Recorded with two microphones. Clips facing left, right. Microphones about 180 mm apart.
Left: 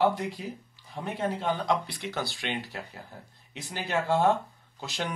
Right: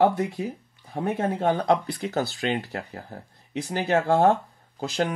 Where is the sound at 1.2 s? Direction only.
45° right (ahead or behind).